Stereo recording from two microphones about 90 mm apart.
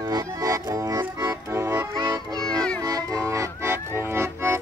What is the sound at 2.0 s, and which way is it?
Music, 45° right (ahead or behind).